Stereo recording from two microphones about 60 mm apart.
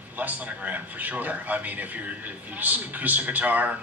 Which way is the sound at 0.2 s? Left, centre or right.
Right.